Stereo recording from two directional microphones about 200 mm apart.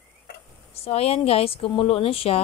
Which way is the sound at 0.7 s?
30° left (ahead or behind).